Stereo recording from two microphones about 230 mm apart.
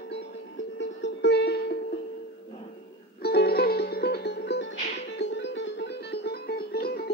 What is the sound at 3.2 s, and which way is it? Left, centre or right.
Music, left.